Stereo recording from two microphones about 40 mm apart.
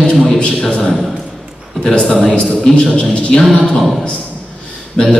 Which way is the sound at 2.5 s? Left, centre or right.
Left.